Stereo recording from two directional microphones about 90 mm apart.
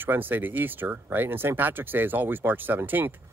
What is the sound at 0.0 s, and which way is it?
A man's voice, 20° right (ahead or behind).